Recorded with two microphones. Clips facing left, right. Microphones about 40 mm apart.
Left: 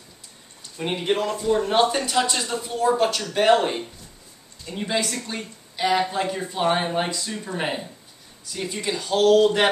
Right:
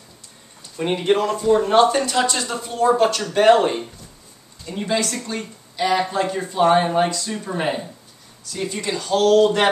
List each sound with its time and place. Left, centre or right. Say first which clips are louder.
0.7 s speech: right 5 dB; centre